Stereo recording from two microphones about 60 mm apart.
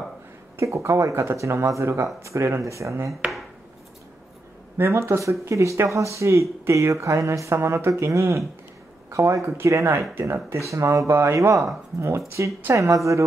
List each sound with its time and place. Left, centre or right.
0.6 s speech: right
2.6 s speech: right
4.7 s speech: right
11.6 s speech: right